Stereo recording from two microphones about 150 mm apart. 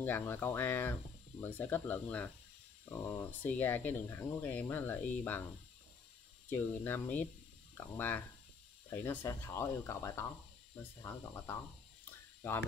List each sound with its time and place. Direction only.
0.0 s speech: 15° left (ahead or behind)
6.5 s speech: 15° left (ahead or behind)